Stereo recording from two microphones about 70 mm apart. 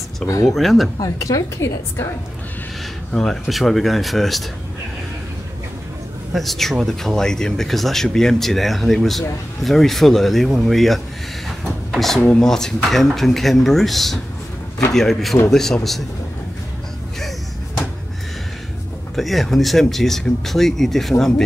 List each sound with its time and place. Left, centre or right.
0.3 s a woman's voice: left
0.6 s speech: centre
1.0 s a woman's voice: left
3.1 s speech: centre
6.3 s speech: centre
19.1 s speech: centre